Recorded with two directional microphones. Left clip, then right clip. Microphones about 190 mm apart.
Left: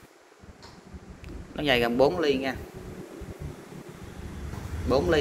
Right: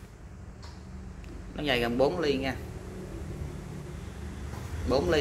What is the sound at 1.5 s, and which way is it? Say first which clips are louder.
Speech: left 4 dB; 15° left (ahead or behind).